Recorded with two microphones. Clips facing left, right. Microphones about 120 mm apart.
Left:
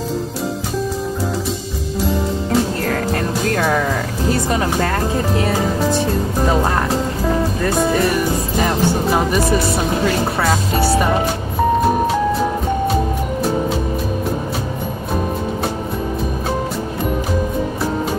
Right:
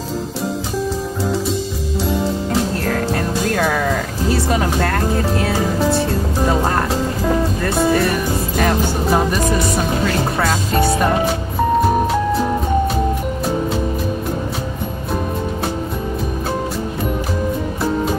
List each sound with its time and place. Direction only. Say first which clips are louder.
4.5 s speech: even; 5° right (ahead or behind)
7.8 s speech: right 2 dB; centre (ahead or behind)
8.5 s music: left 1 dB; 5° left (ahead or behind)
10.4 s speech: right 1 dB; centre (ahead or behind)